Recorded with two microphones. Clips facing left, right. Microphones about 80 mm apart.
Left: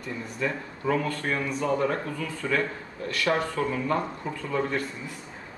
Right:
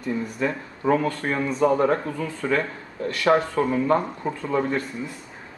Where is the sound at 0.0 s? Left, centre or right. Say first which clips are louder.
Right 5 dB; right.